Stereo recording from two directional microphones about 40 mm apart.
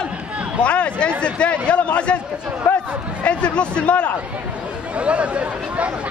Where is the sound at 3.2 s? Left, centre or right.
Left.